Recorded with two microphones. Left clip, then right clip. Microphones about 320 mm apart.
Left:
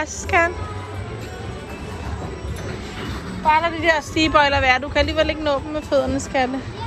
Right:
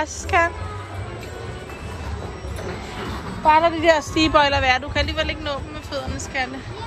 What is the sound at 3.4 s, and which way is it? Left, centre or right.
A woman's voice, centre.